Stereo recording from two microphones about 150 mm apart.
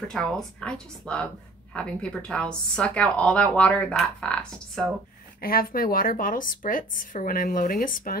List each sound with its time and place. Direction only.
0.1 s a woman's voice: 5° left (ahead or behind)
5.4 s speech: 75° left (ahead or behind)